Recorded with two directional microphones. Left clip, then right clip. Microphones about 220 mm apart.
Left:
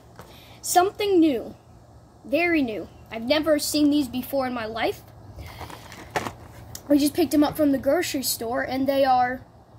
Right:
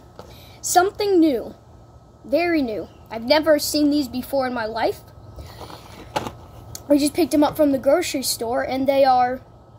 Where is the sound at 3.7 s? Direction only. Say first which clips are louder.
Right 2 dB; 20° left (ahead or behind).